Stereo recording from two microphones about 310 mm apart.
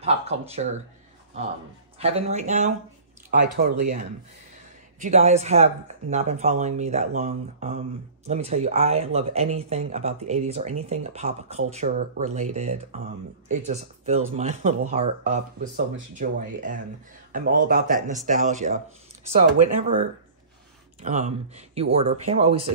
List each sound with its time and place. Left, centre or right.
0.0 s speech: centre
2.0 s speech: centre
5.0 s speech: right
19.8 s speech: right